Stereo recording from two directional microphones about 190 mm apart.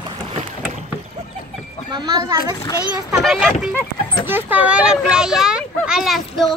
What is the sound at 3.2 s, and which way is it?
Speech, centre (ahead or behind).